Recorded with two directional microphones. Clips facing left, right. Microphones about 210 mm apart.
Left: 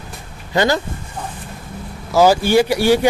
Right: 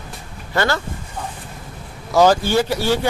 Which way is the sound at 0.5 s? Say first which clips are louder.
Left 4 dB; 15° left (ahead or behind).